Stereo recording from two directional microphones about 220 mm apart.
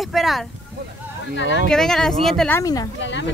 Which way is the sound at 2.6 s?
15° left (ahead or behind).